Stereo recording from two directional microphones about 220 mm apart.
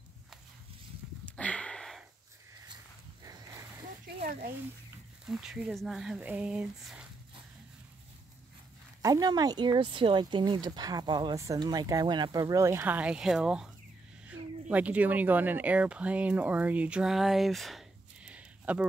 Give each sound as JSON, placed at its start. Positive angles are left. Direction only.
{"t": 1.2, "sound": "sniff", "side_deg": 5}
{"t": 5.3, "sound": "speech", "side_deg": 0}
{"t": 9.0, "sound": "speech", "side_deg": -15}